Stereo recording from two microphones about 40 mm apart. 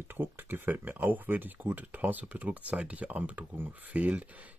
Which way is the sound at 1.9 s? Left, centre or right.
Right.